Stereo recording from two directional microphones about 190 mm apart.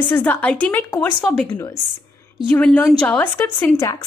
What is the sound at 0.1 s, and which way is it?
A woman's voice, 10° left (ahead or behind).